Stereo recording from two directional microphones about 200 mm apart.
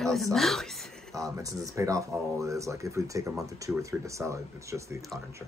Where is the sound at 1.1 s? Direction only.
15° right (ahead or behind).